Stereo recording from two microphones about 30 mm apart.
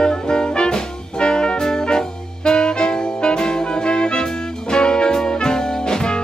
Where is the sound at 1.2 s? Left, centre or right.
Left.